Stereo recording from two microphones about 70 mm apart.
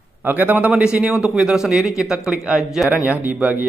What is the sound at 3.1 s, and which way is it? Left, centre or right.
Speech, right.